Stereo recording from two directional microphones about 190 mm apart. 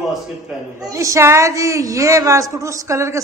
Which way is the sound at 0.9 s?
15° right (ahead or behind).